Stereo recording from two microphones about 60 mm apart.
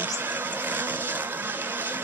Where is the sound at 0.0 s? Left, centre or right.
Right.